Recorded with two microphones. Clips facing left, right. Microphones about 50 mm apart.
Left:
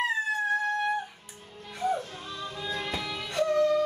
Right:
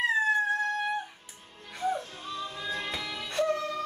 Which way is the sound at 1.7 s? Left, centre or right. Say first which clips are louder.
Left 2 dB; centre.